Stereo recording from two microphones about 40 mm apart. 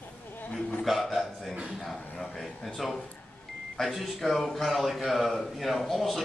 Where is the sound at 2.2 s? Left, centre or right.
Centre.